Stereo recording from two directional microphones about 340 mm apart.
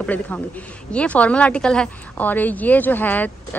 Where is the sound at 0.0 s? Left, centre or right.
Centre.